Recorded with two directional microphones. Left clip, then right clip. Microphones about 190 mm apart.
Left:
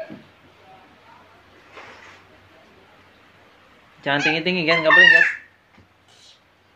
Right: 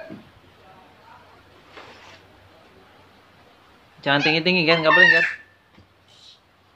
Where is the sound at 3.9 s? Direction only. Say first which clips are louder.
Right 1 dB; 15° right (ahead or behind).